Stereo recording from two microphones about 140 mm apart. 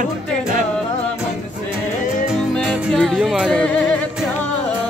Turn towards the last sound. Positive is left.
turn(degrees=5)  # may be behind; listen again after turning